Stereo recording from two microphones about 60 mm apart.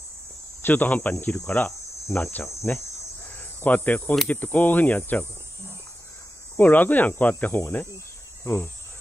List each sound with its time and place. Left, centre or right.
0.6 s speech: left
2.1 s cricket: left
4.3 s speech: left
6.5 s speech: left
8.5 s cricket: left